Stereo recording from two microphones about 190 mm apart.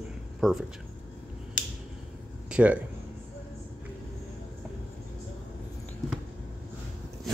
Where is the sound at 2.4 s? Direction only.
5° right (ahead or behind).